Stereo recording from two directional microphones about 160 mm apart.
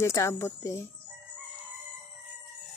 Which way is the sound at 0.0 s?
20° left (ahead or behind).